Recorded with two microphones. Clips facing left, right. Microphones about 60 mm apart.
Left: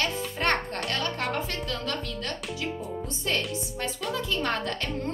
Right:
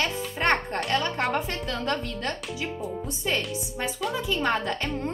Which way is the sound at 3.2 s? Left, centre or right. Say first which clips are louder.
Right 1 dB; centre.